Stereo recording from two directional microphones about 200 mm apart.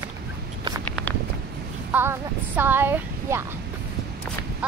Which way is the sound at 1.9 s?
10° right (ahead or behind).